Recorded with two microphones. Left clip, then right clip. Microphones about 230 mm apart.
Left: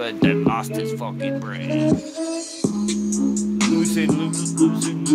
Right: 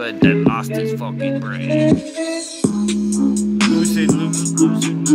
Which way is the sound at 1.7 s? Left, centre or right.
Right.